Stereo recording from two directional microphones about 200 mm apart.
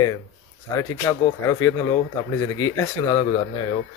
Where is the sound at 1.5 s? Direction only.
15° left (ahead or behind).